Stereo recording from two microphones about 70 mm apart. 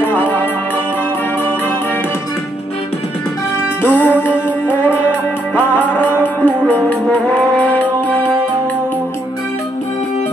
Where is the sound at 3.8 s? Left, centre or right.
Left.